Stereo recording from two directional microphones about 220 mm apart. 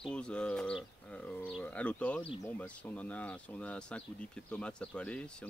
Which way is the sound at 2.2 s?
25° left (ahead or behind).